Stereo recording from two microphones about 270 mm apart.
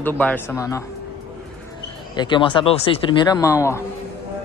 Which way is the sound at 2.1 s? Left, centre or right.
Centre.